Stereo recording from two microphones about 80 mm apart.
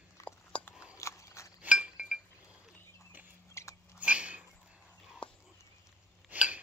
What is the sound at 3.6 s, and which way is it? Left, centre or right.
Biting, left.